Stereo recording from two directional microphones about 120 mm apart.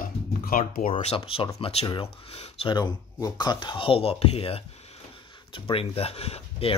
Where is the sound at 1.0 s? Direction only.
50° left (ahead or behind).